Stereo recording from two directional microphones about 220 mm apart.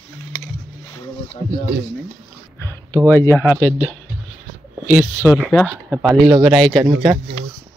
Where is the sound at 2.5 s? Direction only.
10° left (ahead or behind).